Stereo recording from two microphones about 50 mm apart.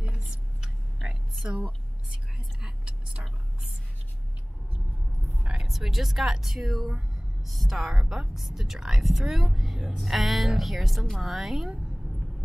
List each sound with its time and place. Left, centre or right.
0.1 s a sound: centre
1.4 s a woman's voice: right
2.6 s whispering: centre
5.5 s a woman's voice: centre